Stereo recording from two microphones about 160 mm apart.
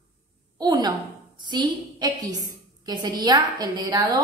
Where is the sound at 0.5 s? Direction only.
25° right (ahead or behind).